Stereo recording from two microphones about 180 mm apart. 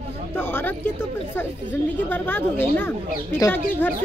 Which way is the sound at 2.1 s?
10° left (ahead or behind).